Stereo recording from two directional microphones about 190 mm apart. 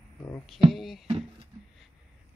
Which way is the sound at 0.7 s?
Centre (ahead or behind).